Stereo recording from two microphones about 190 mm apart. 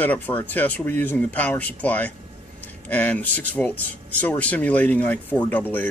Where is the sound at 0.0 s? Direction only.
10° left (ahead or behind).